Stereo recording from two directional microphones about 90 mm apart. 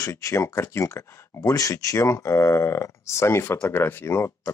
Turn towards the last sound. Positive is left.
turn(degrees=30)  # may be behind; listen again after turning